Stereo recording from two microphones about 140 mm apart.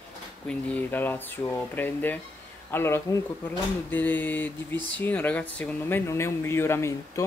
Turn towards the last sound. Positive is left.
turn(degrees=20)  # may be behind; listen again after turning